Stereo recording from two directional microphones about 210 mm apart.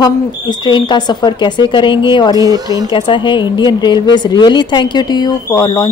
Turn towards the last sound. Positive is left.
turn(degrees=20)  # may be behind; listen again after turning